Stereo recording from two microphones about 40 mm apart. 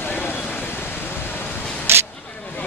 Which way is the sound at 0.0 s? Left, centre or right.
Left.